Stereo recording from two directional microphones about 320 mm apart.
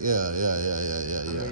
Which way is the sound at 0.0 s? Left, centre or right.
Right.